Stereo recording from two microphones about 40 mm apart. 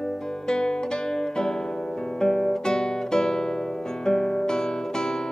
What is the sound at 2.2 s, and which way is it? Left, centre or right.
Guitar, centre.